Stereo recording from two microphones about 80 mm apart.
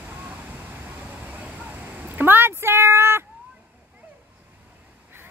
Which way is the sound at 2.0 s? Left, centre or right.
Right.